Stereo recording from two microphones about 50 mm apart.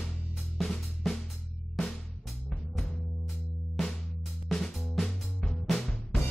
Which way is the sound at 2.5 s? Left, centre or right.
Centre.